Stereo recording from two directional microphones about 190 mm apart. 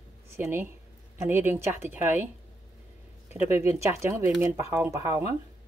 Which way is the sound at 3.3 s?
15° right (ahead or behind).